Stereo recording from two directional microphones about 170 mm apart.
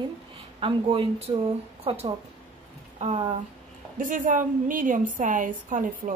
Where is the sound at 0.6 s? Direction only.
30° right (ahead or behind).